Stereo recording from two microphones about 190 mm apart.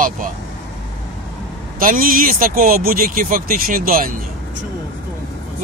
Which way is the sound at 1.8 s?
45° right (ahead or behind).